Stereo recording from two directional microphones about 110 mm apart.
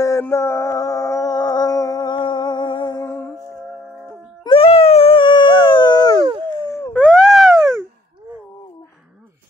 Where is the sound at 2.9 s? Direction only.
25° left (ahead or behind).